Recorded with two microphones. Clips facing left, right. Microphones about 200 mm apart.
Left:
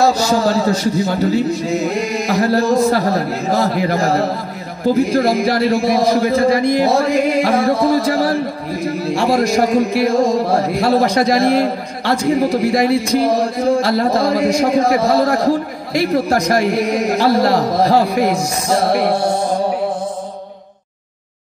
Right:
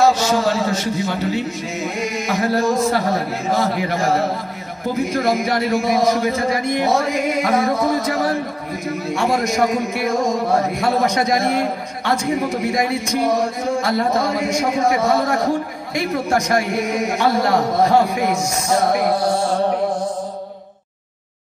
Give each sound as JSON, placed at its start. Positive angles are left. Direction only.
{"t": 0.0, "sound": "a man's voice", "side_deg": 35}